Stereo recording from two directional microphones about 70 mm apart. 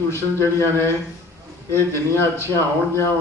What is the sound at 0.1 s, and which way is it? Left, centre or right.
A man's voice, left.